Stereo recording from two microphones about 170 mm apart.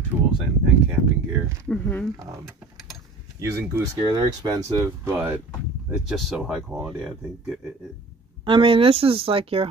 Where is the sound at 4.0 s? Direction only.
25° right (ahead or behind).